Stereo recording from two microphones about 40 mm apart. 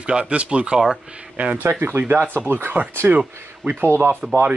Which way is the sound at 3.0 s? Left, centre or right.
Right.